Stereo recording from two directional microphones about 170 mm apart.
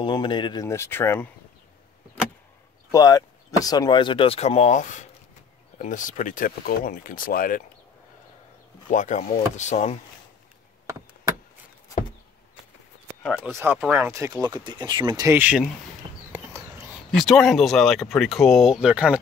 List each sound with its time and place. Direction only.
0.0 s speech: 25° left (ahead or behind)
2.9 s speech: 20° left (ahead or behind); by 7.6 s 55° left (ahead or behind)
8.9 s speech: 50° left (ahead or behind)
13.2 s speech: 5° left (ahead or behind)
13.5 s speech: 15° right (ahead or behind)
15.3 s speech: 10° right (ahead or behind)
17.1 s speech: centre (ahead or behind)